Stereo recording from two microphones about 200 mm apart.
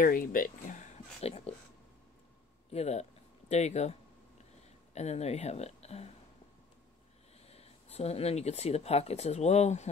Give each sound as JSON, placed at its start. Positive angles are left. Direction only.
{"t": 0.0, "sound": "speech", "side_deg": 45}
{"t": 2.7, "sound": "speech", "side_deg": 35}
{"t": 7.4, "sound": "speech", "side_deg": 30}